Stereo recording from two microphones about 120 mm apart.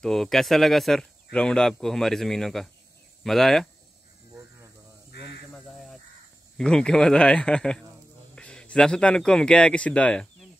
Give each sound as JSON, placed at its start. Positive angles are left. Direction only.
{"t": 0.0, "sound": "speech", "side_deg": 5}
{"t": 4.3, "sound": "a sound", "side_deg": -20}
{"t": 6.6, "sound": "a man's voice", "side_deg": 5}